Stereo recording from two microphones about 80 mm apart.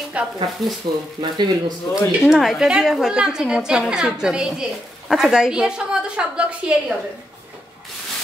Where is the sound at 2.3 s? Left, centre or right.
Centre.